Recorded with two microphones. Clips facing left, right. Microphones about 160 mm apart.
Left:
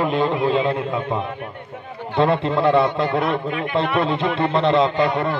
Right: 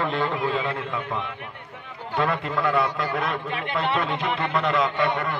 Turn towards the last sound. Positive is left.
turn(degrees=30)  # may be behind; listen again after turning